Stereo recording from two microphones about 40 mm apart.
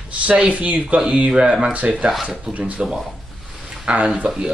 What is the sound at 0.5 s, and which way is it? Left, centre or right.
Speech, right.